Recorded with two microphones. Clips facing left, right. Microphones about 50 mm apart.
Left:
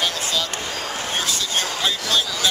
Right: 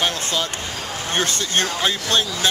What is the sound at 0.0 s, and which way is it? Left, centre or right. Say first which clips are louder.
Basketball bounce: right 1 dB; right.